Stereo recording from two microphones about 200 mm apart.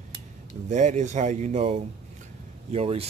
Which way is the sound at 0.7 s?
35° right (ahead or behind).